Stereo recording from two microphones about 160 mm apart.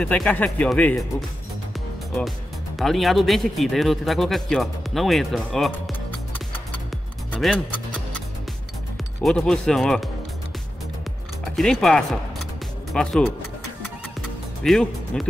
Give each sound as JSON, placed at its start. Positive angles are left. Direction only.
{"t": 0.0, "sound": "speech", "side_deg": 10}
{"t": 2.8, "sound": "speech", "side_deg": 0}
{"t": 9.2, "sound": "speech", "side_deg": 5}
{"t": 11.5, "sound": "speech", "side_deg": 0}
{"t": 14.6, "sound": "speech", "side_deg": 0}